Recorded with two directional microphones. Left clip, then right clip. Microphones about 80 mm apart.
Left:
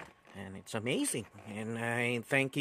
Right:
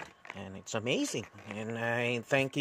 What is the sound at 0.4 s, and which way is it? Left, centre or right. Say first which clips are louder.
Speech: right 2 dB; centre.